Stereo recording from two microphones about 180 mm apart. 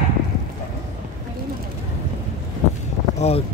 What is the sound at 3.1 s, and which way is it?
Speech, 35° left (ahead or behind).